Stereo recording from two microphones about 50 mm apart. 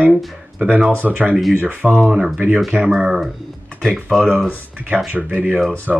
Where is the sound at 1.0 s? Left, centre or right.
Centre.